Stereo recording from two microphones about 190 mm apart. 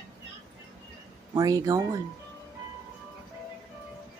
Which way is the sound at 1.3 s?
20° right (ahead or behind).